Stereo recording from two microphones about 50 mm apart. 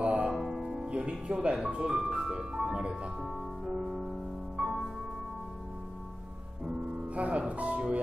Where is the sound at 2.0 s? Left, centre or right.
Centre.